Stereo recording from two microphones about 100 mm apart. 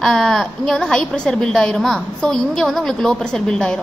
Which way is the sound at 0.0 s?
5° left (ahead or behind).